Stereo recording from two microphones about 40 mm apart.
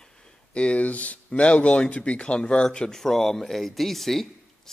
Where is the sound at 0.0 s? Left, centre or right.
Left.